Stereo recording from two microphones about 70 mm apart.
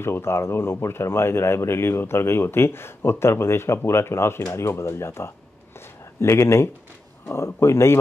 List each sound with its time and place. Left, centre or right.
0.0 s speech: left